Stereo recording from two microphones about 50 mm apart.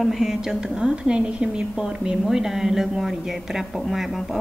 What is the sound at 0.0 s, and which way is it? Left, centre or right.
A woman's voice, centre.